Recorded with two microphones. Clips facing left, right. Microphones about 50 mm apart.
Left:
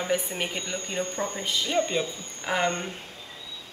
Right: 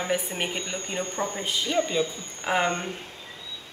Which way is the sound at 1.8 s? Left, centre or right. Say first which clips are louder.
Right 1 dB; centre.